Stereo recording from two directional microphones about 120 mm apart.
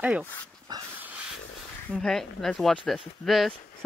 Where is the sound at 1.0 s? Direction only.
10° right (ahead or behind).